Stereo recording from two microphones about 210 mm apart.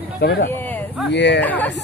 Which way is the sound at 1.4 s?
10° left (ahead or behind).